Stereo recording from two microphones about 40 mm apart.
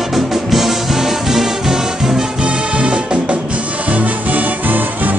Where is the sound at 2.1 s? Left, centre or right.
Right.